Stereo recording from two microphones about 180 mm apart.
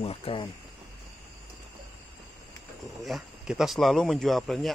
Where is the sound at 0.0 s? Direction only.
30° left (ahead or behind).